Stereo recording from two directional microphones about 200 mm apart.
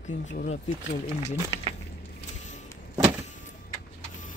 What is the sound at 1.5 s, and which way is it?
Speech, 20° right (ahead or behind).